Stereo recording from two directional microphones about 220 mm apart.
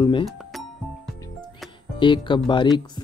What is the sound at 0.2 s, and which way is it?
Music, centre (ahead or behind).